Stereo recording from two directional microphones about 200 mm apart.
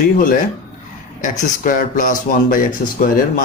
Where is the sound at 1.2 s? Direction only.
40° left (ahead or behind).